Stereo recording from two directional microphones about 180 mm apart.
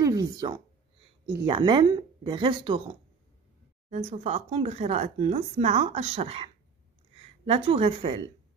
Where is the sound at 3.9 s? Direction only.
35° right (ahead or behind).